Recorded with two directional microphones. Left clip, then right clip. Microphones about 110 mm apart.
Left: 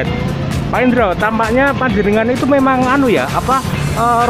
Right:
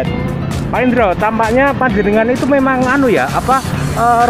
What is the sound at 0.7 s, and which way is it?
Speech, 20° left (ahead or behind).